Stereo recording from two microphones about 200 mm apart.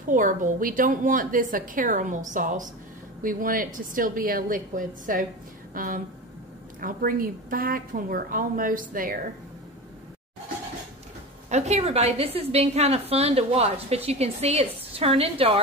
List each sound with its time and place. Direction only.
0.1 s a woman's voice: 40° right (ahead or behind)
11.5 s a woman's voice: 35° right (ahead or behind)